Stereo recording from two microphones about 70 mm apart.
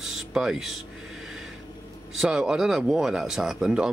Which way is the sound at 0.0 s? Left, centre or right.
Centre.